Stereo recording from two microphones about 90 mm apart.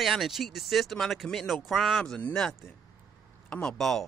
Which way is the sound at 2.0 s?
10° left (ahead or behind).